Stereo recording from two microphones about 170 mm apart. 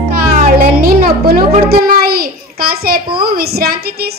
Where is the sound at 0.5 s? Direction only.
60° right (ahead or behind).